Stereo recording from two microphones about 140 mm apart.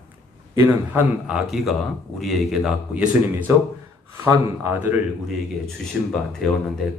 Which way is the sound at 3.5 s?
20° right (ahead or behind).